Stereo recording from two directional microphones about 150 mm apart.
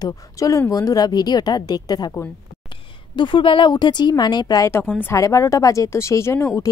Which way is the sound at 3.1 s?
35° left (ahead or behind).